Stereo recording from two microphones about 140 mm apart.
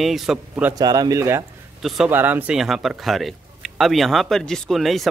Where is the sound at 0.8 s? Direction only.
30° right (ahead or behind).